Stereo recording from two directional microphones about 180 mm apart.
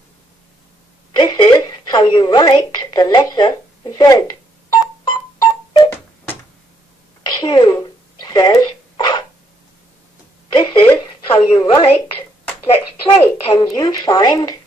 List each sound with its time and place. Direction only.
1.1 s a woman's voice: 25° left (ahead or behind)
4.6 s music: 20° left (ahead or behind)
7.2 s a sound: 25° left (ahead or behind)
8.2 s zipper: 20° left (ahead or behind)
10.5 s a sound: 25° left (ahead or behind)
11.6 s a woman's voice: 30° left (ahead or behind)
13.5 s a woman's voice: 20° left (ahead or behind)